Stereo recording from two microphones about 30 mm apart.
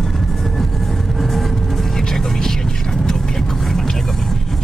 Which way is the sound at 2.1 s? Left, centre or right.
Centre.